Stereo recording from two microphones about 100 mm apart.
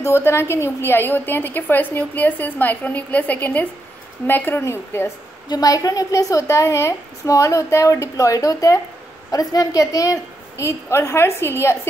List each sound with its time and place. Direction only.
0.0 s a woman's voice: 25° left (ahead or behind)
5.5 s a woman's voice: 40° left (ahead or behind)